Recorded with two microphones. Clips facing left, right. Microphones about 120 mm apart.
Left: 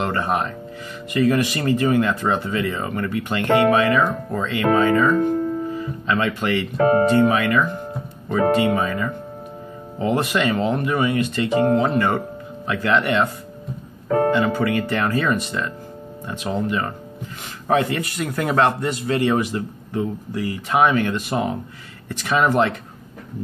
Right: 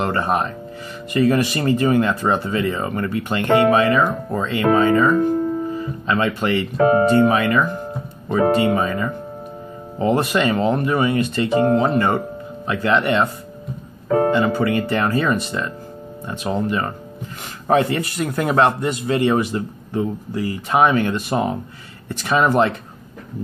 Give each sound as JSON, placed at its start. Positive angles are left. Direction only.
{"t": 0.0, "sound": "speech", "side_deg": -35}
{"t": 6.8, "sound": "speech", "side_deg": -15}
{"t": 7.1, "sound": "a man's voice", "side_deg": -30}
{"t": 16.6, "sound": "a man's voice", "side_deg": -40}